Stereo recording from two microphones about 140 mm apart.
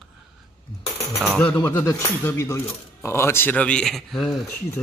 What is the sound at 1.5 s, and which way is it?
Speech, 15° left (ahead or behind).